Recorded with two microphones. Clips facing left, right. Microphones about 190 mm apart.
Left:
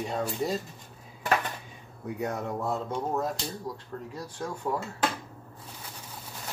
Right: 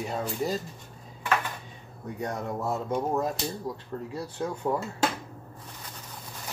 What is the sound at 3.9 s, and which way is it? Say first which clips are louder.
Speech: right 3 dB; 25° right (ahead or behind).